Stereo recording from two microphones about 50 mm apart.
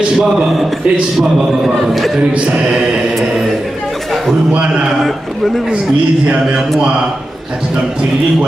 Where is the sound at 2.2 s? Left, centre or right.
Right.